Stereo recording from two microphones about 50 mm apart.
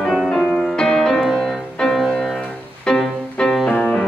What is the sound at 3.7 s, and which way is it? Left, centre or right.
Music, centre.